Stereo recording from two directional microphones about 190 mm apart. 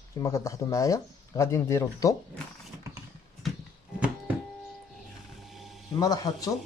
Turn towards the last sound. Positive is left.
turn(degrees=20)  # may be behind; listen again after turning